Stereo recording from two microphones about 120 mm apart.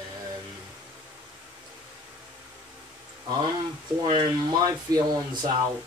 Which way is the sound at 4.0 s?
40° right (ahead or behind).